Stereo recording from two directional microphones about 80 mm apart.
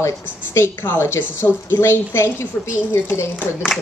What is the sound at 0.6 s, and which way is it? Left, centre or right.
A woman's voice, left.